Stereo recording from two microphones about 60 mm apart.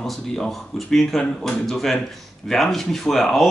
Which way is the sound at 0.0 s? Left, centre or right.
Centre.